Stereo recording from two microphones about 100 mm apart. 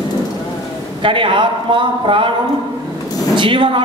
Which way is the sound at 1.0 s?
60° right (ahead or behind).